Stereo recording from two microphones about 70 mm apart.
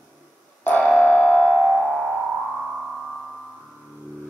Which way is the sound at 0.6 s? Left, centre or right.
Left.